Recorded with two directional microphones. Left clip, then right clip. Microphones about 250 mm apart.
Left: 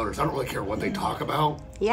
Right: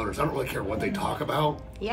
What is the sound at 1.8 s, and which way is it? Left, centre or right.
Speech, left.